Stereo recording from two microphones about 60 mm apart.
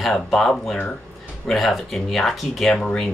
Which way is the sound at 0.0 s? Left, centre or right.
Centre.